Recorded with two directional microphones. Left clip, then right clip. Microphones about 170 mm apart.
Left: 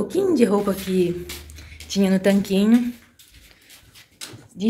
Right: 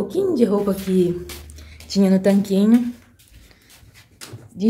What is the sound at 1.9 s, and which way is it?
Speech, 10° right (ahead or behind).